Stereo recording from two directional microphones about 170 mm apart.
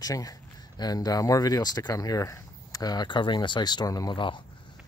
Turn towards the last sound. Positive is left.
turn(degrees=30)  # may be behind; listen again after turning